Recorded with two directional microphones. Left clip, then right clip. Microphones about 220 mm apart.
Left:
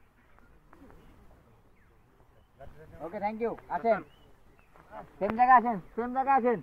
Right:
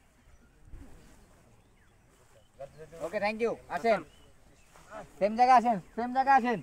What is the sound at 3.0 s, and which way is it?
Speech, 35° right (ahead or behind).